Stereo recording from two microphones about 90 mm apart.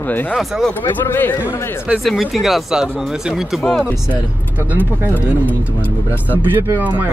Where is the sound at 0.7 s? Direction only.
25° left (ahead or behind).